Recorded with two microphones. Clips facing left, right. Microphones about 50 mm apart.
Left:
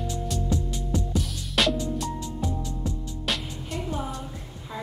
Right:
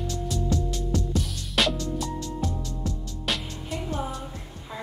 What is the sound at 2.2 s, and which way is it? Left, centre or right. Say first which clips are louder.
Music: even; centre.